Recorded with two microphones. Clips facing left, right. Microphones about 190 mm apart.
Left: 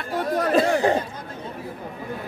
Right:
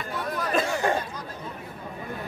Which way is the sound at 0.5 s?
30° left (ahead or behind).